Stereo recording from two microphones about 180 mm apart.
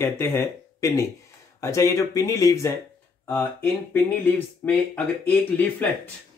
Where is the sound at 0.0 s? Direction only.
15° left (ahead or behind).